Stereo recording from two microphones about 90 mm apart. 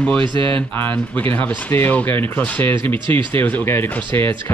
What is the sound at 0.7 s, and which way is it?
Speech, 20° left (ahead or behind).